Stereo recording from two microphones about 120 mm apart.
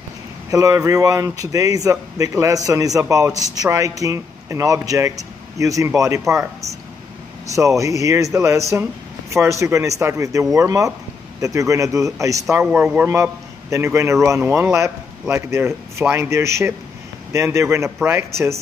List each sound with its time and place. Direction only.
0.5 s a man's voice: 25° right (ahead or behind)
12.7 s a man's voice: 15° right (ahead or behind)